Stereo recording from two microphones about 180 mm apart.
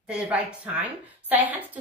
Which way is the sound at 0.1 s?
5° right (ahead or behind).